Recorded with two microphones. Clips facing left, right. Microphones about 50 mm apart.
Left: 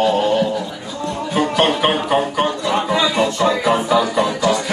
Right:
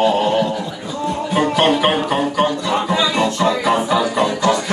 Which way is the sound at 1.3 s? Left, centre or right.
Centre.